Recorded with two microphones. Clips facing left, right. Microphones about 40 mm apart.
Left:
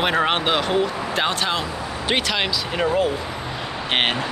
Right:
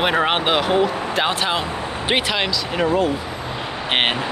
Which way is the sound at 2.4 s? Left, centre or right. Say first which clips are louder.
Right 1 dB; centre.